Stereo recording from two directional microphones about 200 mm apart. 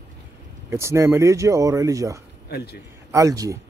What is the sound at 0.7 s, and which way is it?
Speech, 15° right (ahead or behind).